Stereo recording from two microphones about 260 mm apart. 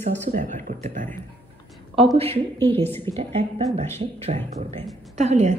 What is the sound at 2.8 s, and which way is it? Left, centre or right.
Speech, centre.